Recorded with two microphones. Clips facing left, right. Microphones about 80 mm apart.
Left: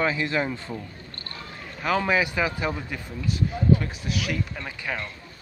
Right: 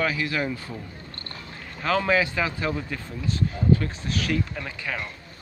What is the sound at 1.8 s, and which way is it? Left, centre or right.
A man's voice, centre.